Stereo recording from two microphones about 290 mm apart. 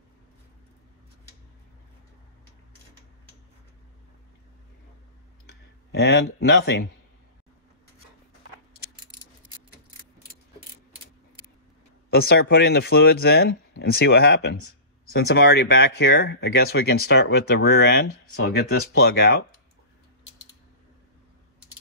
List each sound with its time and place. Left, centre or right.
5.5 s speech: left
12.1 s speech: left
18.0 s speech: left
18.8 s speech: left